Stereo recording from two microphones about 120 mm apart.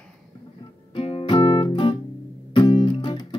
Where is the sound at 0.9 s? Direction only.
50° left (ahead or behind).